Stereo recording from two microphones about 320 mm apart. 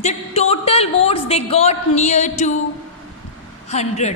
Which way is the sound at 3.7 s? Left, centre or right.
Left.